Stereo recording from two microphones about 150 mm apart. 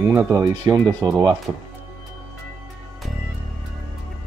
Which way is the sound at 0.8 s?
Centre (ahead or behind).